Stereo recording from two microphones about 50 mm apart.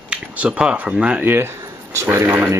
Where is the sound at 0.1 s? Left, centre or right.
Centre.